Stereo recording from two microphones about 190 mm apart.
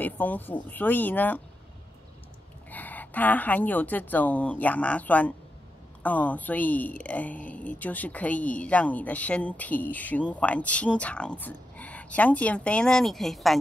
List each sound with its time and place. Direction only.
0.0 s speech: 10° left (ahead or behind)
2.7 s speech: 10° left (ahead or behind)